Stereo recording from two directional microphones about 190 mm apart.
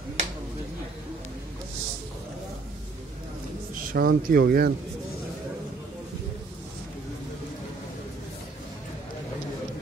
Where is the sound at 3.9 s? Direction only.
55° right (ahead or behind).